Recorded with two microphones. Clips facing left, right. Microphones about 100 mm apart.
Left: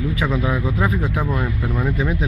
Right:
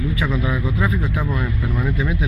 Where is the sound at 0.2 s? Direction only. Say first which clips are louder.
Left 3 dB; 35° left (ahead or behind).